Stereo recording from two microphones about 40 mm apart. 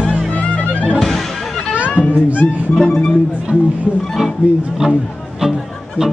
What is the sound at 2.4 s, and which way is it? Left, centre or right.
Music, left.